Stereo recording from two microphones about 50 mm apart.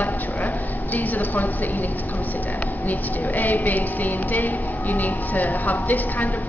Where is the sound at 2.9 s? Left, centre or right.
Left.